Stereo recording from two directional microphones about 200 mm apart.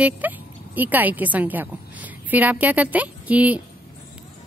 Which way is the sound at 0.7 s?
10° right (ahead or behind).